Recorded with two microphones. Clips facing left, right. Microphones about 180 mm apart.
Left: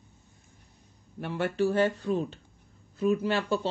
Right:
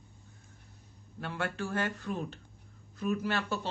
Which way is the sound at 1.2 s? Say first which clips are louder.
Left 8 dB; 20° left (ahead or behind).